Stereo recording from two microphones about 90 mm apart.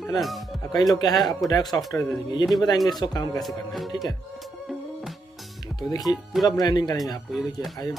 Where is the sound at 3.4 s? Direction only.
Centre (ahead or behind).